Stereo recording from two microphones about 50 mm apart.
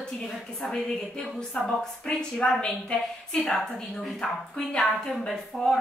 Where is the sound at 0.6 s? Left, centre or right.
Centre.